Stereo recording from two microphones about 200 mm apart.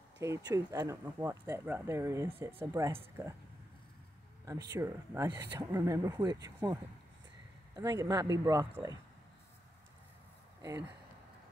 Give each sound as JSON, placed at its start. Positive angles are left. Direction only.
{"t": 0.2, "sound": "speech", "side_deg": -15}
{"t": 4.7, "sound": "speech", "side_deg": -15}